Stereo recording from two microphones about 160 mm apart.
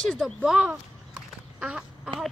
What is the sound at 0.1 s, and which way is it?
Speech, centre (ahead or behind).